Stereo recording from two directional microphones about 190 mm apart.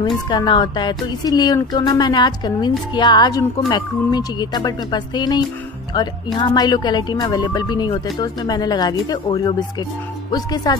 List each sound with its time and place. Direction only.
0.3 s speech: 25° left (ahead or behind)